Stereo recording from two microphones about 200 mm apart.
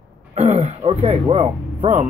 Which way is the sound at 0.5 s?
30° right (ahead or behind).